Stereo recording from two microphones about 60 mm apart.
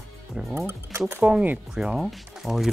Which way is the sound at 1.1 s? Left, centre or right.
Right.